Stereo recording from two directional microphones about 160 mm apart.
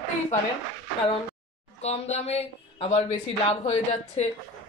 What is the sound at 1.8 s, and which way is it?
Speech, 40° left (ahead or behind).